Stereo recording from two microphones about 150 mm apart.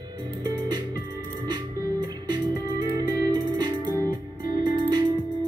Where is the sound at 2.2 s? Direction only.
30° right (ahead or behind).